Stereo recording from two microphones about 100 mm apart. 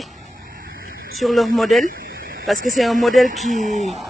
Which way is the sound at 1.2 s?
Centre (ahead or behind).